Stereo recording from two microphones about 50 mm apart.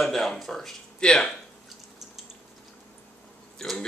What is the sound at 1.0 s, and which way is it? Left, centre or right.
Speech, centre.